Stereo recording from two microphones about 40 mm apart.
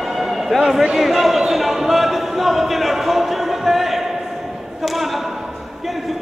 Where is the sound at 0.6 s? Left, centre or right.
Centre.